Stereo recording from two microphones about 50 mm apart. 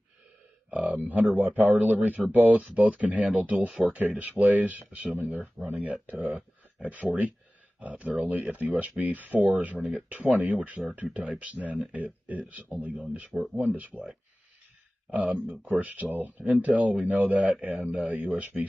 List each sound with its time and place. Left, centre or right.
0.7 s speech: right
15.0 s speech: right